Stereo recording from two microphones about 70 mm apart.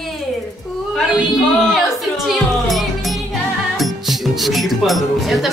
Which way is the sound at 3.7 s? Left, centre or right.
Centre.